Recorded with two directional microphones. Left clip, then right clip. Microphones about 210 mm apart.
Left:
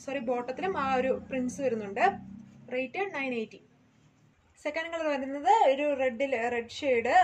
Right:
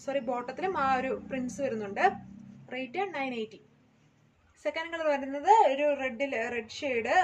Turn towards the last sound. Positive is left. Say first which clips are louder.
# left 3 dB
turn(degrees=-10)  # may be behind; listen again after turning